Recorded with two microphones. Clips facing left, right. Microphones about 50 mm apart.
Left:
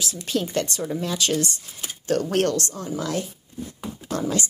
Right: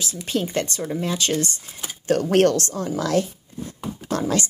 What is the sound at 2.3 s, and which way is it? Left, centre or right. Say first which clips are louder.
Speech: right 5 dB; right.